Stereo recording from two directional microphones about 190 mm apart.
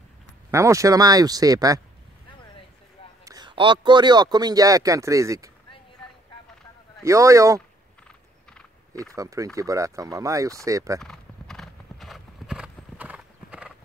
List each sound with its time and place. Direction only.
0.5 s speech: 15° right (ahead or behind)
3.3 s speech: 25° right (ahead or behind)
7.0 s speech: 15° right (ahead or behind)
9.1 s speech: 15° right (ahead or behind)
11.0 s clip-clop: centre (ahead or behind)